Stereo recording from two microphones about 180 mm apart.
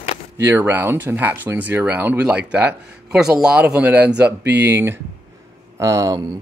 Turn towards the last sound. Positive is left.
turn(degrees=-20)  # may be behind; listen again after turning